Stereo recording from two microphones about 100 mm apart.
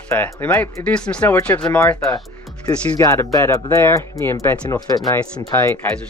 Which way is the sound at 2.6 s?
30° left (ahead or behind).